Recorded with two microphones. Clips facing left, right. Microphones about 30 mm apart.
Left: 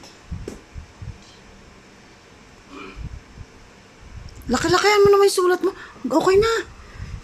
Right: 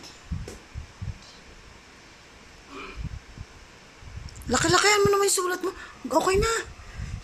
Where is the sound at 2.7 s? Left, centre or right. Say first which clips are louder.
Left 2 dB; centre.